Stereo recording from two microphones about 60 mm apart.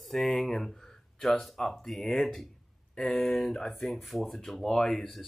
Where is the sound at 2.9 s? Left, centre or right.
Centre.